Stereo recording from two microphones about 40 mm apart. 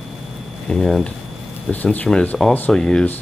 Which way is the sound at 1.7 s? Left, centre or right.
Left.